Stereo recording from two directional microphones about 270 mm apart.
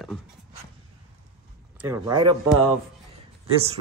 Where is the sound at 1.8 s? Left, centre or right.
Centre.